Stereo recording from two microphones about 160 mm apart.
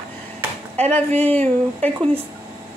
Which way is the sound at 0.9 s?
10° left (ahead or behind).